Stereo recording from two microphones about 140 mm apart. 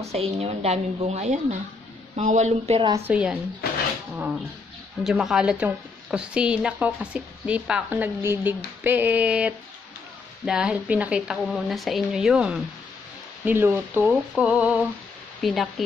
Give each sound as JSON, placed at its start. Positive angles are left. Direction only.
{"t": 0.0, "sound": "a woman's voice", "side_deg": -45}
{"t": 3.1, "sound": "a woman's voice", "side_deg": -10}
{"t": 4.1, "sound": "a sound", "side_deg": -5}
{"t": 5.0, "sound": "a woman's voice", "side_deg": -5}